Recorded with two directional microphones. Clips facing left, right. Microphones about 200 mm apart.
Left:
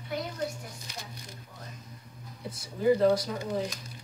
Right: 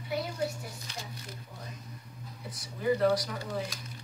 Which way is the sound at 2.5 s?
30° left (ahead or behind).